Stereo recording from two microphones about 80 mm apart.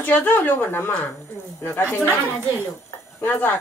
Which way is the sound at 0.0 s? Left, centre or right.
Left.